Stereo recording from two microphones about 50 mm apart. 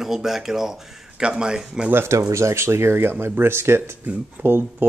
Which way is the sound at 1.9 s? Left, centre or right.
Right.